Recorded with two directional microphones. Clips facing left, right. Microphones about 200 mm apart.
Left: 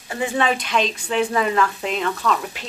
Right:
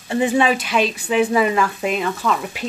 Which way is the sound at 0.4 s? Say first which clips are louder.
Right 3 dB; 5° right (ahead or behind).